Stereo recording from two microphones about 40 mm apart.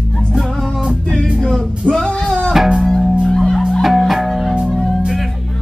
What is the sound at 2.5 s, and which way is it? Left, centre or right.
Music, centre.